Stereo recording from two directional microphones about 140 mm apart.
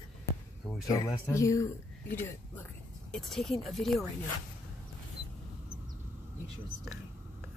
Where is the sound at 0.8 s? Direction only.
25° left (ahead or behind).